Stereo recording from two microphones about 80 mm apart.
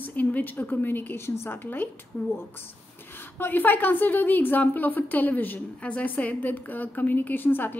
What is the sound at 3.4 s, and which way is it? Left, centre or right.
A woman's voice, left.